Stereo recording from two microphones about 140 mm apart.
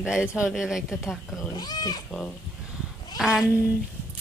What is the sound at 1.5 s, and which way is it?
Speech, 30° left (ahead or behind).